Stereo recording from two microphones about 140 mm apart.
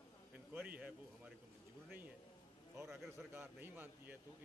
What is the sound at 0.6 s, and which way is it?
Speech, 10° right (ahead or behind).